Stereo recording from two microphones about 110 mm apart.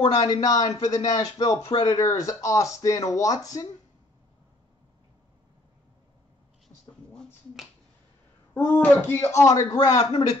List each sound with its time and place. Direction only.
0.0 s speech: 45° left (ahead or behind)
8.5 s speech: 20° left (ahead or behind)